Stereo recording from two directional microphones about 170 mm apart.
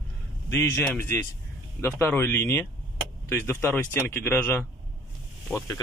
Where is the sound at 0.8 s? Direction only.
15° left (ahead or behind).